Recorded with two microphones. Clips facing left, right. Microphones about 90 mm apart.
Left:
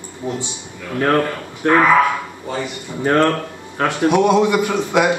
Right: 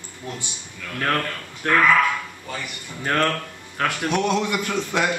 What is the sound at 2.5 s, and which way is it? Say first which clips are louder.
Speech: left 9 dB; 60° left (ahead or behind).